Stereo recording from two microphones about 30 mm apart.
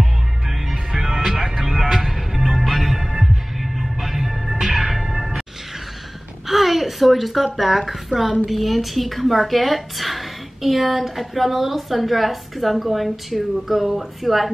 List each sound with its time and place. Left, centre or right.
0.0 s music: centre
6.4 s a woman's voice: centre